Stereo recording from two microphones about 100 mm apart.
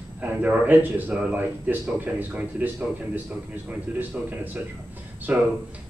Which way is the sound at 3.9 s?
20° right (ahead or behind).